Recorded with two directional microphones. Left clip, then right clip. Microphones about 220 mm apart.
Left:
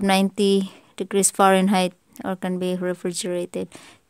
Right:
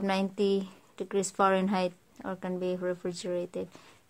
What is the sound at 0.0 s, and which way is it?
Speech, 45° left (ahead or behind).